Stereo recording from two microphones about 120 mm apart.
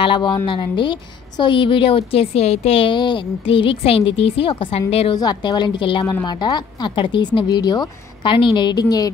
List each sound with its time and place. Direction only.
0.0 s a woman's voice: 40° left (ahead or behind)
5.1 s a woman's voice: 35° left (ahead or behind)